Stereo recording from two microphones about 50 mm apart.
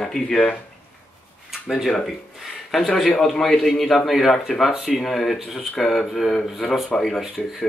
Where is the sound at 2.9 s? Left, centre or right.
Left.